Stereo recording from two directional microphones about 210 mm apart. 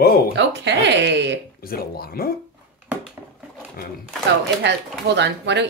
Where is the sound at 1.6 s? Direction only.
45° left (ahead or behind).